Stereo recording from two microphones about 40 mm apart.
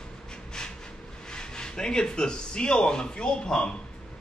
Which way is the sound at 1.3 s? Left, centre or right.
Centre.